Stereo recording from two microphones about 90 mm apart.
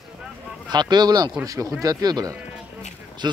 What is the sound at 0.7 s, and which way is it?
Speech, 50° right (ahead or behind).